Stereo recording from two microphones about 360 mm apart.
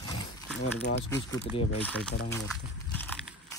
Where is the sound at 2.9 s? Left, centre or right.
Centre.